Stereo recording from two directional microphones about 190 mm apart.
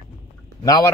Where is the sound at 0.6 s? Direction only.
20° left (ahead or behind).